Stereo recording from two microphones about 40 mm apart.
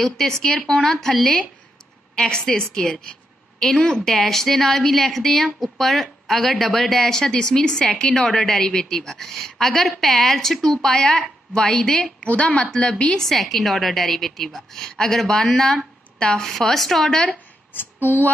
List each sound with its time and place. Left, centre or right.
0.0 s a woman's voice: centre
2.1 s a woman's voice: left
12.2 s a woman's voice: left
12.7 s a woman's voice: centre
16.4 s a woman's voice: centre
18.0 s female singing: left